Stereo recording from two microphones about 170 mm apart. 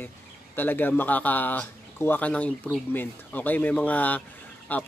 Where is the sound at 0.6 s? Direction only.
10° left (ahead or behind).